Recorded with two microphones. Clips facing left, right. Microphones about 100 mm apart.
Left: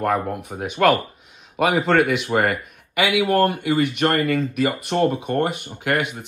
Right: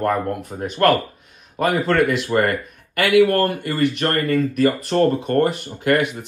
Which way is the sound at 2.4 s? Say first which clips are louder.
Right 1 dB; 5° left (ahead or behind).